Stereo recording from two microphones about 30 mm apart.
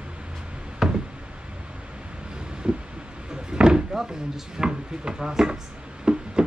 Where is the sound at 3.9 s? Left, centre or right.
Centre.